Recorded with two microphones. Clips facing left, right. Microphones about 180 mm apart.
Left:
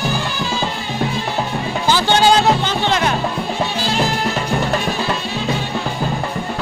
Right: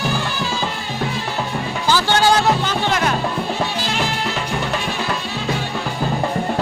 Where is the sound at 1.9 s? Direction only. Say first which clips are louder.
Left 2 dB; 20° left (ahead or behind).